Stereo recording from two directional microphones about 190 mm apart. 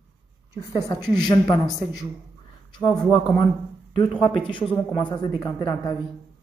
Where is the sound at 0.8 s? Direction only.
20° left (ahead or behind).